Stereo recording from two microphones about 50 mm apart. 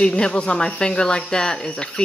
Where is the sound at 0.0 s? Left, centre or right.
Centre.